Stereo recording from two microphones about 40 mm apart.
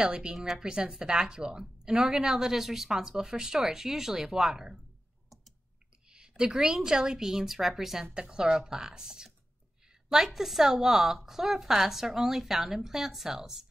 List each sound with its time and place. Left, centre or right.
0.0 s a woman's voice: right
6.0 s a woman's voice: right
8.1 s speech: right
10.1 s a woman's voice: centre